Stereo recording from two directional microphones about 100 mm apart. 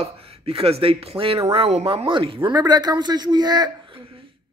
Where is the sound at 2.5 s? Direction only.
45° right (ahead or behind).